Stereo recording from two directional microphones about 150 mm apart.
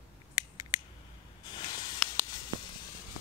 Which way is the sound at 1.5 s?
25° left (ahead or behind).